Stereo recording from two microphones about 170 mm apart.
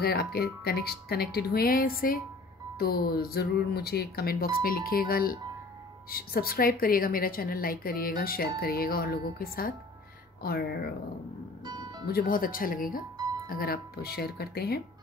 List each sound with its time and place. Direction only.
0.0 s a woman's voice: 65° left (ahead or behind)
11.6 s music: 25° right (ahead or behind)
12.1 s a woman's voice: 60° left (ahead or behind)